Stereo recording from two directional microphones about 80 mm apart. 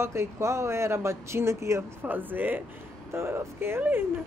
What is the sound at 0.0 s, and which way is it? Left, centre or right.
A woman's voice, right.